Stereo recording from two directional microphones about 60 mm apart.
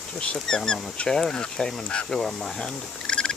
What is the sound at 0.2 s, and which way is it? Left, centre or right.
Speech, centre.